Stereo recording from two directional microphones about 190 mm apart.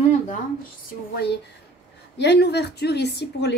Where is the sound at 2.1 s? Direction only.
60° left (ahead or behind).